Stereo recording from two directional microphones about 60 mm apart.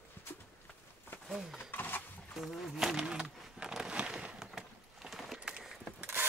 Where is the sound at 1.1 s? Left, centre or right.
Left.